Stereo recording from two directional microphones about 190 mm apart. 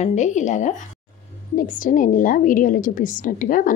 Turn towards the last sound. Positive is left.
turn(degrees=45)  # may be behind; listen again after turning